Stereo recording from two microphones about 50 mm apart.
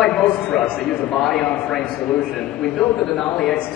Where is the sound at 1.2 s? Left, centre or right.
Centre.